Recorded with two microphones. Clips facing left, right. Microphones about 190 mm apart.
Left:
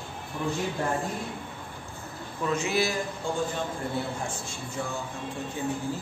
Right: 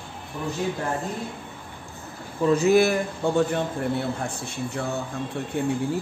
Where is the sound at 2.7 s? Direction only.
55° right (ahead or behind).